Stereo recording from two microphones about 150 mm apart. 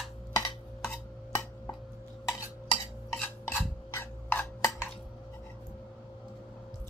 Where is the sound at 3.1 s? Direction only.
15° left (ahead or behind).